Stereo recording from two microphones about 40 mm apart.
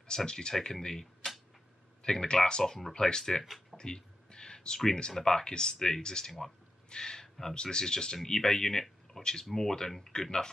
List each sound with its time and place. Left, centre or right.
0.0 s speech: centre
2.6 s speech: centre